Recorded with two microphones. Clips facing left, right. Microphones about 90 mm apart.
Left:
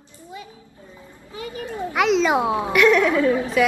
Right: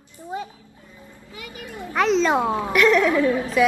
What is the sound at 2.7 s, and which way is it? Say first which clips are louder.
Speech: left 1 dB; centre (ahead or behind).